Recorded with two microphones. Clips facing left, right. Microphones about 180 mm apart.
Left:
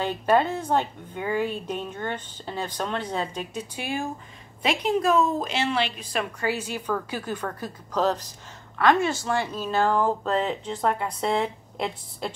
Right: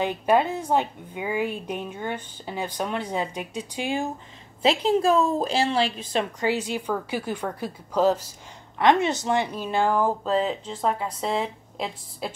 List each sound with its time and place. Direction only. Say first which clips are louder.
0.0 s speech: right 1 dB; 15° right (ahead or behind)
4.6 s a woman's voice: right 3 dB; 30° right (ahead or behind); by 8.3 s 10° right (ahead or behind)
8.7 s speech: right 1 dB; 20° right (ahead or behind); by 12.4 s 5° right (ahead or behind)